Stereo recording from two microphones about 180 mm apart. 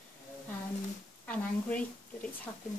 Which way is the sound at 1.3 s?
5° left (ahead or behind).